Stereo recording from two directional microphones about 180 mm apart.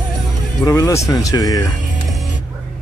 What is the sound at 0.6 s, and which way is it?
Speech, 20° left (ahead or behind).